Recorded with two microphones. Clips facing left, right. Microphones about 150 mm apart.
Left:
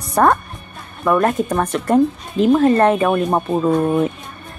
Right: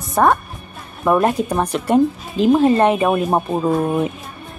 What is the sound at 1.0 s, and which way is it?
Speech, 15° right (ahead or behind).